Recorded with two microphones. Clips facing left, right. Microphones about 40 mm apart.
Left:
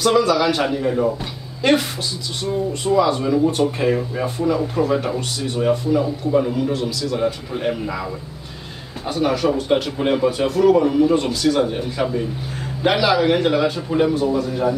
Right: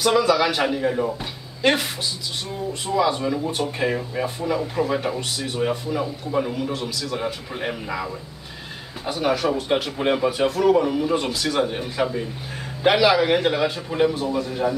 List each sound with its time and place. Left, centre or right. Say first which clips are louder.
0.0 s speech: left 2 dB; centre